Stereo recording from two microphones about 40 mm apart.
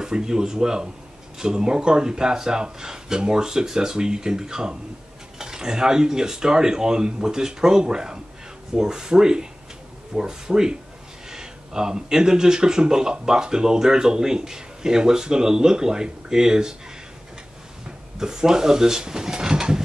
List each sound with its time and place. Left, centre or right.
0.0 s speech: centre
18.2 s speech: centre